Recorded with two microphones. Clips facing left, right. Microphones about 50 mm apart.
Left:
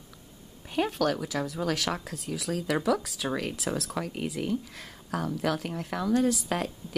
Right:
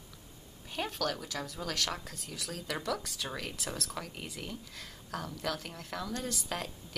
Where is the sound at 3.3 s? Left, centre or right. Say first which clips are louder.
Left 11 dB; centre.